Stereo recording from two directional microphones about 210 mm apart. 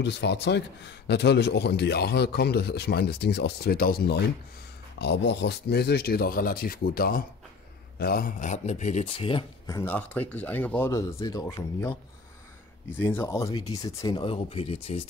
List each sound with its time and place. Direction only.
0.0 s a man's voice: 55° left (ahead or behind); by 15.0 s 30° left (ahead or behind)